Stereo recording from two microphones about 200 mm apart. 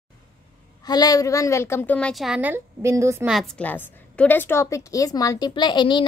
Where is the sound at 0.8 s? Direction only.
20° left (ahead or behind); by 3.3 s 15° right (ahead or behind).